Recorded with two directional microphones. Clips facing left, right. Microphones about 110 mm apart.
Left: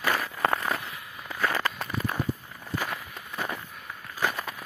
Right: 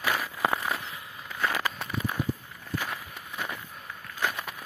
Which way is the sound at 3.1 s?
5° left (ahead or behind).